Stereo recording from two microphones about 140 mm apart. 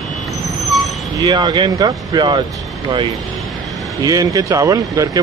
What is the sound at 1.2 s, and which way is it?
Speech, 30° right (ahead or behind).